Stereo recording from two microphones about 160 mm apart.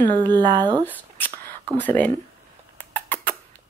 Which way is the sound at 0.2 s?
25° right (ahead or behind).